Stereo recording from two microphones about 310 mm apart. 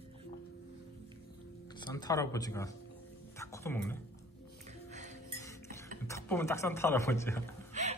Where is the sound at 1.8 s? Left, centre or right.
Centre.